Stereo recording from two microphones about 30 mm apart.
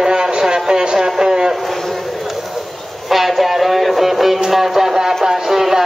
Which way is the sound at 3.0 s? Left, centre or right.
Centre.